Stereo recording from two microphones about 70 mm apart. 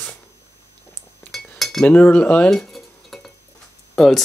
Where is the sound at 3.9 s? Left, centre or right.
Centre.